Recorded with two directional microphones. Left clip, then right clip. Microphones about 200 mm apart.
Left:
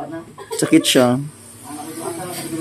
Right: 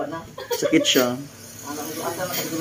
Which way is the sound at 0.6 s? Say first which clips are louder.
Left 5 dB; 50° left (ahead or behind).